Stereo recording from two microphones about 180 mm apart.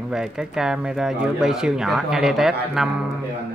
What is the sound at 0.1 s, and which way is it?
Speech, 5° right (ahead or behind).